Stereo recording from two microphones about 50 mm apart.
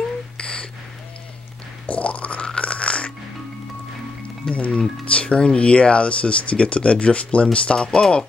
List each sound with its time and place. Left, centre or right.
0.4 s a sound: left
1.9 s music: left
4.5 s speech: left